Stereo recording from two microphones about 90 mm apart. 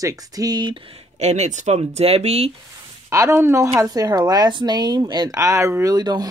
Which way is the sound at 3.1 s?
30° right (ahead or behind).